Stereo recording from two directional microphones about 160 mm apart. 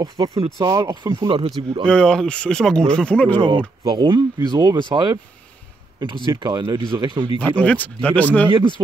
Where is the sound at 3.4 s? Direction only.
30° right (ahead or behind).